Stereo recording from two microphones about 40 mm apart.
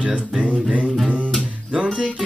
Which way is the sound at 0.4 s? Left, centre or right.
Right.